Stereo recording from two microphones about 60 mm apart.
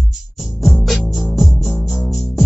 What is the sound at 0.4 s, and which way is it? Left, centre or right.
Music, centre.